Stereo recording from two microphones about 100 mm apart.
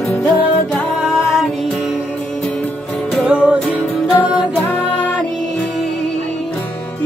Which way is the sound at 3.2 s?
10° right (ahead or behind).